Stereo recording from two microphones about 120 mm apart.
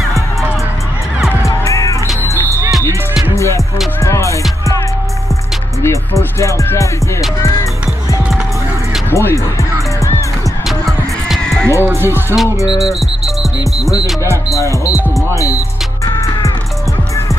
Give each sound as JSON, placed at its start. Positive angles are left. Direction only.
{"t": 1.6, "sound": "music", "side_deg": 25}
{"t": 3.3, "sound": "music", "side_deg": 25}
{"t": 5.8, "sound": "music", "side_deg": 25}
{"t": 9.1, "sound": "music", "side_deg": 25}
{"t": 10.7, "sound": "music", "side_deg": 0}
{"t": 11.9, "sound": "speech", "side_deg": -20}
{"t": 14.5, "sound": "music", "side_deg": 25}